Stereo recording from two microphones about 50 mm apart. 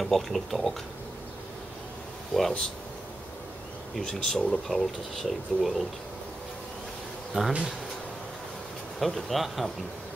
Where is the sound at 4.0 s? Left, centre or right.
Centre.